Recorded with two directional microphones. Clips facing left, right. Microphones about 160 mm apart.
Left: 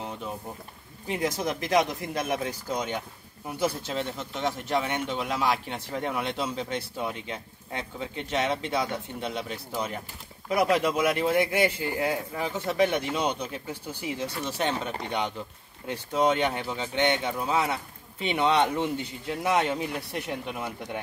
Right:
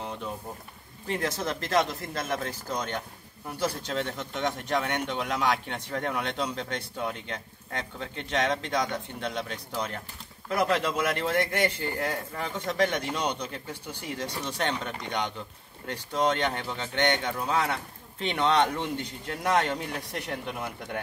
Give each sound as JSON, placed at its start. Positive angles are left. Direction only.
{"t": 1.0, "sound": "speech", "side_deg": 10}
{"t": 15.9, "sound": "speech", "side_deg": 10}